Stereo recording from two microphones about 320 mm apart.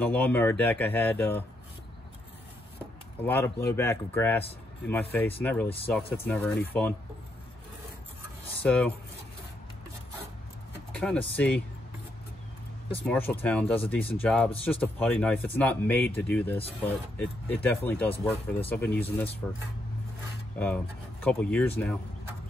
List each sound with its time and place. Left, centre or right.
0.0 s speech: centre
3.3 s speech: centre
8.6 s speech: centre
10.9 s speech: centre
13.0 s speech: centre
18.1 s speech: centre
18.7 s speech: centre